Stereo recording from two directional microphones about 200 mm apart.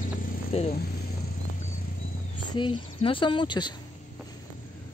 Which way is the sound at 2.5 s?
25° left (ahead or behind).